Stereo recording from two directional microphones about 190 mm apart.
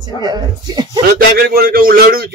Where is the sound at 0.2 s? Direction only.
20° right (ahead or behind).